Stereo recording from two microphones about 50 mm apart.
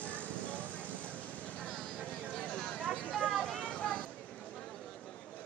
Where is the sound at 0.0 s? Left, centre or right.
Left.